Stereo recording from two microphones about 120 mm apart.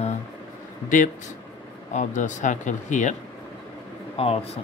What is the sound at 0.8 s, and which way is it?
Speech, 90° left.